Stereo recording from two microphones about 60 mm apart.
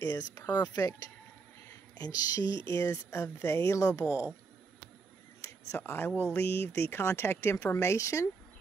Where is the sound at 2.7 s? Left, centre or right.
Left.